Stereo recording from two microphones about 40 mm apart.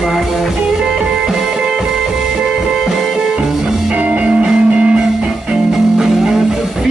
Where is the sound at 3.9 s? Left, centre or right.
Right.